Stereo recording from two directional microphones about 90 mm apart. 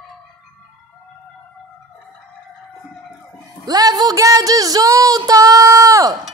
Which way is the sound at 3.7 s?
45° right (ahead or behind).